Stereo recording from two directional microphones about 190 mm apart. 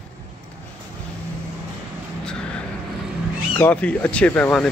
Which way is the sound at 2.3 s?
5° left (ahead or behind).